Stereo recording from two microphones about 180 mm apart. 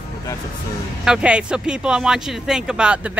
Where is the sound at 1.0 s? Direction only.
5° right (ahead or behind).